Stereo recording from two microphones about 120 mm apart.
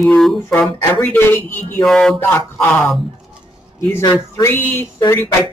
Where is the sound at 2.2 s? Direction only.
20° left (ahead or behind).